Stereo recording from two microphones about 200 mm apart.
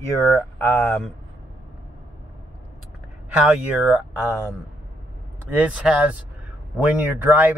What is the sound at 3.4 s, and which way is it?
Speech, 5° right (ahead or behind).